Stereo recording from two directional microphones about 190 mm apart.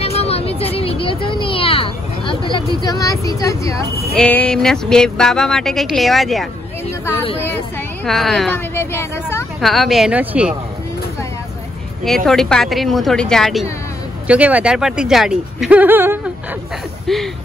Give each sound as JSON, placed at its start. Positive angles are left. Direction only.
{"t": 0.0, "sound": "a sound", "side_deg": 30}
{"t": 4.2, "sound": "speech", "side_deg": 5}
{"t": 8.0, "sound": "speech", "side_deg": 0}
{"t": 8.7, "sound": "speech", "side_deg": 15}
{"t": 9.6, "sound": "speech", "side_deg": 0}
{"t": 12.3, "sound": "speech", "side_deg": 5}
{"t": 17.1, "sound": "speech", "side_deg": 0}